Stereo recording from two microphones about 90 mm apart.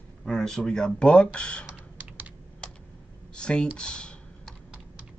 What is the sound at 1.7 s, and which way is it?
Typing, 15° right (ahead or behind).